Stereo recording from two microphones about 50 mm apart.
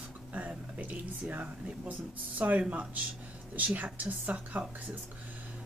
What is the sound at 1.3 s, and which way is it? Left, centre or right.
Speech, right.